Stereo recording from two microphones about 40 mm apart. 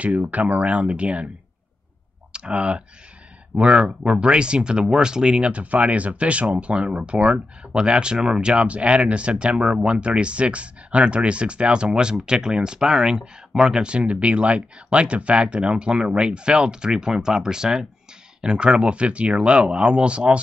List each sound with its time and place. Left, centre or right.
0.0 s speech: right
2.3 s speech: right